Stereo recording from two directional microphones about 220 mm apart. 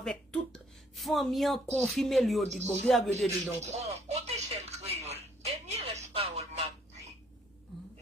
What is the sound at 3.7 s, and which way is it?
Speech, 30° right (ahead or behind).